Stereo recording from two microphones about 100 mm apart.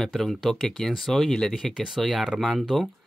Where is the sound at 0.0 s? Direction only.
5° left (ahead or behind).